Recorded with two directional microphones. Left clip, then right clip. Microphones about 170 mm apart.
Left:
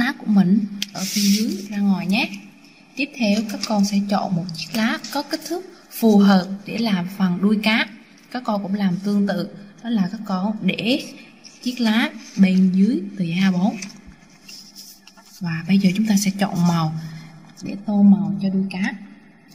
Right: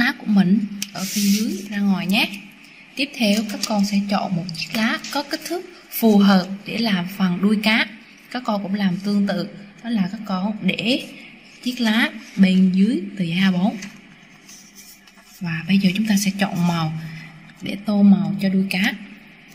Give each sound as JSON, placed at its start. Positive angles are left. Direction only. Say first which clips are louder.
{"t": 0.0, "sound": "a sound", "louder": "right 1 dB", "side_deg": 5}
{"t": 1.7, "sound": "a woman's voice", "louder": "right 3 dB", "side_deg": 0}
{"t": 3.6, "sound": "a woman's voice", "louder": "left 1 dB", "side_deg": 10}
{"t": 15.4, "sound": "speech", "louder": "even", "side_deg": 10}
{"t": 17.8, "sound": "a woman's voice", "louder": "even", "side_deg": -30}